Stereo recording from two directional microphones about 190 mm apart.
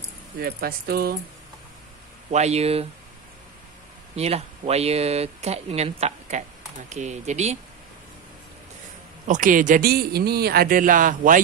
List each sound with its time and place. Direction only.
0.4 s speech: 55° right (ahead or behind)
2.3 s speech: 35° right (ahead or behind)
4.1 s speech: 35° right (ahead or behind)
9.3 s speech: 45° right (ahead or behind)